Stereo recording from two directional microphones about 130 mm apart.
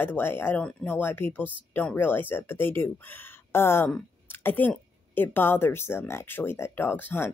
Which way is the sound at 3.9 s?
15° left (ahead or behind).